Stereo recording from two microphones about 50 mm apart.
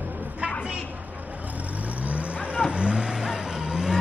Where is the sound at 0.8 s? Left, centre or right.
Right.